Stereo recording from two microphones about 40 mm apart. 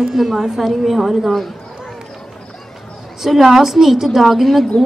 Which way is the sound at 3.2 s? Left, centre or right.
Centre.